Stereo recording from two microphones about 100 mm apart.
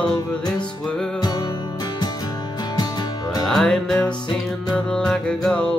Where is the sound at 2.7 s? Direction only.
45° left (ahead or behind).